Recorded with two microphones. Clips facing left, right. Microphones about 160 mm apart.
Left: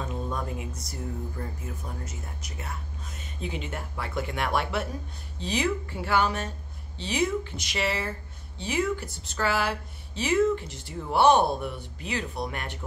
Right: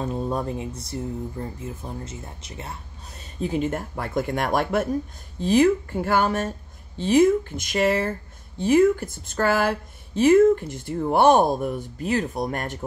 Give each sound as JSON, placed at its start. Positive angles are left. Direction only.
{"t": 0.0, "sound": "speech", "side_deg": -35}
{"t": 3.3, "sound": "speech", "side_deg": -45}